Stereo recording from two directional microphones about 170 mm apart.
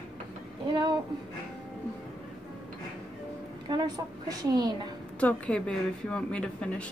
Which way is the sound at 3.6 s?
25° right (ahead or behind).